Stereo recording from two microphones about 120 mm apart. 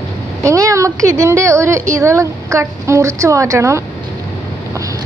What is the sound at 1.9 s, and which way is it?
A woman's voice, 25° right (ahead or behind).